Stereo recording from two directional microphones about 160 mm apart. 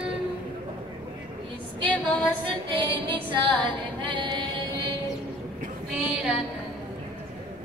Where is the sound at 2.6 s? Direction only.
30° right (ahead or behind).